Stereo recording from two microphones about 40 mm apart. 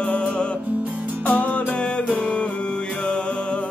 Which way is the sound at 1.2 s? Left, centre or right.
Left.